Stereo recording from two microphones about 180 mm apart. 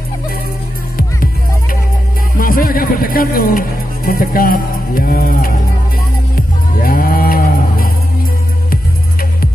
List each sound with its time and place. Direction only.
0.9 s music: 55° left (ahead or behind)